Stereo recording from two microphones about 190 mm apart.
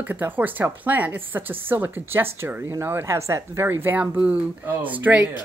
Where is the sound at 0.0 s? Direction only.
10° right (ahead or behind).